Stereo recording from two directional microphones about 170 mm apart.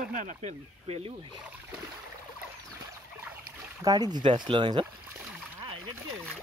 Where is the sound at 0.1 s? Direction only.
50° right (ahead or behind).